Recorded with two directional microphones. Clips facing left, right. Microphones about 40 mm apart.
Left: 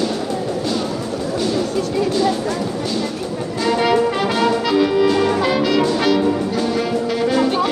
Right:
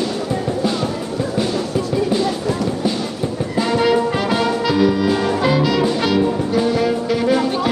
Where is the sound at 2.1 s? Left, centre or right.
Centre.